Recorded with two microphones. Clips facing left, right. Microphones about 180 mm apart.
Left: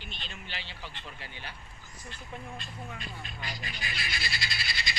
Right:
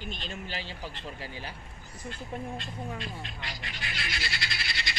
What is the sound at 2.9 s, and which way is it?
Speech, 80° right.